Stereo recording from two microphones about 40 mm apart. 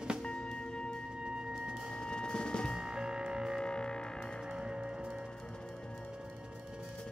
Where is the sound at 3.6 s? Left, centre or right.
Centre.